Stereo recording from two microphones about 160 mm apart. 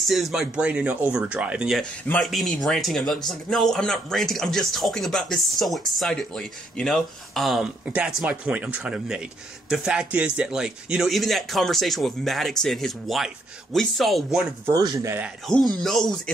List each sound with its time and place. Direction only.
0.1 s speech: centre (ahead or behind)
1.8 s speech: 5° left (ahead or behind)
14.7 s speech: 20° right (ahead or behind)
15.4 s speech: centre (ahead or behind)